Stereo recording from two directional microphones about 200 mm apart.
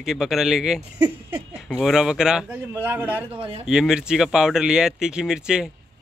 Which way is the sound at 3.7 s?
5° right (ahead or behind).